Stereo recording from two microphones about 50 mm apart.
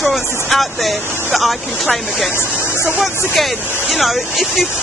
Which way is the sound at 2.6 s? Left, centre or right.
Left.